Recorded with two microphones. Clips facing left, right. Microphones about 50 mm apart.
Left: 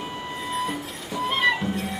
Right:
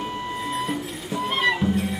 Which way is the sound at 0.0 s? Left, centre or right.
Centre.